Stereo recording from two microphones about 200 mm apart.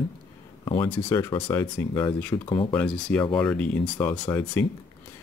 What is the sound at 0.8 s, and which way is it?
Speech, 10° left (ahead or behind).